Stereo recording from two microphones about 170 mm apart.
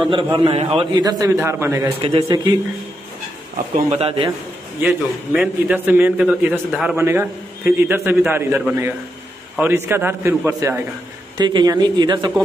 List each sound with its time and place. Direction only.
0.1 s a man's voice: 30° right (ahead or behind)
0.9 s a man's voice: 20° right (ahead or behind)
2.0 s a man's voice: 35° right (ahead or behind)
2.2 s speech: 25° right (ahead or behind)
3.9 s a man's voice: 35° right (ahead or behind)
4.8 s a man's voice: 10° right (ahead or behind)
11.3 s speech: 25° right (ahead or behind)